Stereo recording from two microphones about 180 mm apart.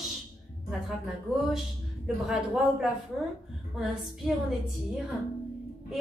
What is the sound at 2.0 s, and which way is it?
Speech, 5° right (ahead or behind).